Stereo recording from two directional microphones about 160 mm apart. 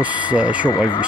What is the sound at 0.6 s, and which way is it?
Speech, 30° left (ahead or behind).